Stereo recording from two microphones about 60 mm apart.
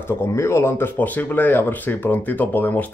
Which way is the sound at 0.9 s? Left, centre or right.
Left.